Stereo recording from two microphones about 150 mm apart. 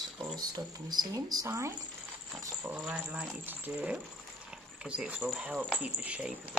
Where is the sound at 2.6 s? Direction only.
5° right (ahead or behind).